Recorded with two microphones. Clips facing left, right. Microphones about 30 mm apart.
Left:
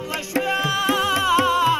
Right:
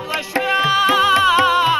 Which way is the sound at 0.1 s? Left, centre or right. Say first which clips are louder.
Right 4 dB; right.